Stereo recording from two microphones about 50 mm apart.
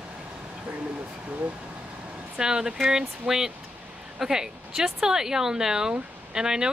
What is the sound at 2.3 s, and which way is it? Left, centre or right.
Speech, centre.